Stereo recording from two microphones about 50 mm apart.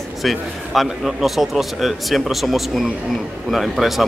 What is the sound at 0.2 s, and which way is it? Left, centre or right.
A man's voice, centre.